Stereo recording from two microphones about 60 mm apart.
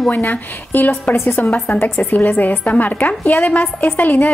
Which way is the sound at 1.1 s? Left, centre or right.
Left.